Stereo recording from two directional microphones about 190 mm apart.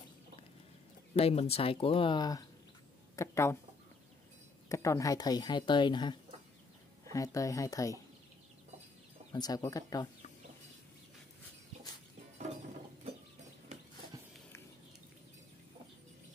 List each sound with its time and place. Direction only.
1.1 s speech: 30° left (ahead or behind); by 3.5 s 15° left (ahead or behind)
4.6 s speech: 15° left (ahead or behind)
9.3 s speech: 20° left (ahead or behind)